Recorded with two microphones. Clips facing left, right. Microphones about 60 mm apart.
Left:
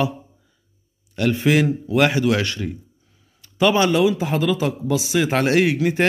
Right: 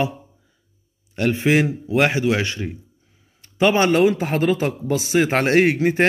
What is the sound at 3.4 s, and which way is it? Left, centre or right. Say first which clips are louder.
A man's voice: even; right.